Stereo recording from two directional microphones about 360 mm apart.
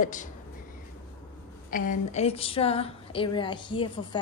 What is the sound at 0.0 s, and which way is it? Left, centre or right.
Speech, left.